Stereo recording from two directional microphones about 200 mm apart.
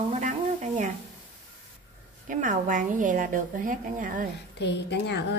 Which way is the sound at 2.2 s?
40° right (ahead or behind).